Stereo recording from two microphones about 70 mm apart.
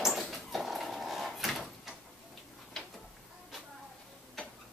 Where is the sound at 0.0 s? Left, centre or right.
Centre.